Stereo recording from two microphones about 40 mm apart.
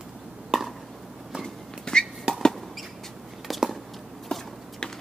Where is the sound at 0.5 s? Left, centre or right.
Centre.